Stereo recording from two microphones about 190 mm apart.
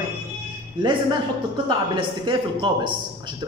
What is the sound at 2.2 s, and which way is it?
Speech, 25° right (ahead or behind).